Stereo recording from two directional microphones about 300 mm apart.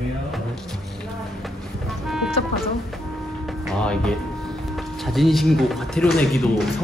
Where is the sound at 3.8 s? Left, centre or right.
Centre.